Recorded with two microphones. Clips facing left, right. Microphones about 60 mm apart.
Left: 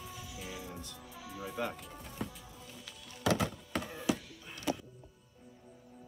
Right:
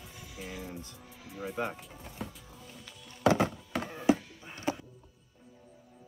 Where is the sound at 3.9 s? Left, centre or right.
Right.